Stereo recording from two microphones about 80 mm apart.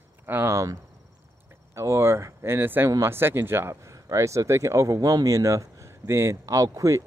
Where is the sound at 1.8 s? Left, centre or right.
Right.